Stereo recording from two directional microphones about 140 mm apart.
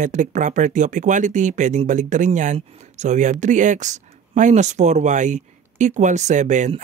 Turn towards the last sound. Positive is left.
turn(degrees=-60)  # may be behind; listen again after turning